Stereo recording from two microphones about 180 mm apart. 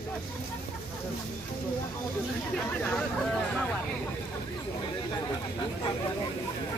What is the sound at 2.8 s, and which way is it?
Hubbub, 5° left (ahead or behind).